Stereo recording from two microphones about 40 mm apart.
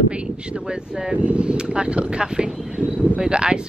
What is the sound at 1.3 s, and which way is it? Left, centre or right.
Speech, right.